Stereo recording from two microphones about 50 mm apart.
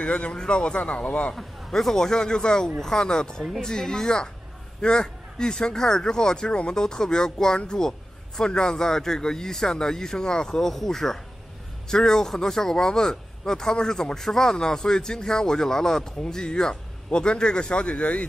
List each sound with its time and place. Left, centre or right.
0.0 s a man's voice: left
1.3 s speech: centre; by 18.2 s left